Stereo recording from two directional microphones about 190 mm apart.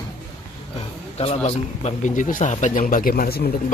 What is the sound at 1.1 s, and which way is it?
A man's voice, 30° left (ahead or behind).